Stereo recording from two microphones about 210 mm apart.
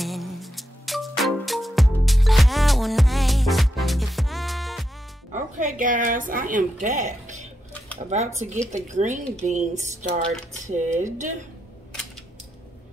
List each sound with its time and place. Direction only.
0.0 s music: centre (ahead or behind)
5.3 s a woman's voice: 35° right (ahead or behind)